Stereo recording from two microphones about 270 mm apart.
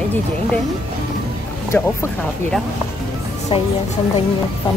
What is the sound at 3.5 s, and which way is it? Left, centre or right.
Speech, left.